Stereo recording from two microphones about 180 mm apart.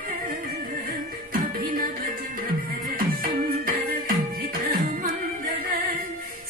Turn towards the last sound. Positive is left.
turn(degrees=-55)  # may be behind; listen again after turning